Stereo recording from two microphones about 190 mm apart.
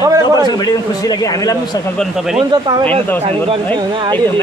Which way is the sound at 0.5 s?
20° left (ahead or behind).